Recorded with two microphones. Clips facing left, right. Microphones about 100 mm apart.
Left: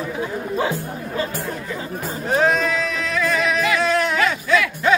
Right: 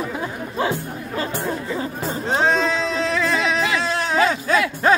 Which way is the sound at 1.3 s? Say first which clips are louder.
Right 3 dB; 25° right (ahead or behind).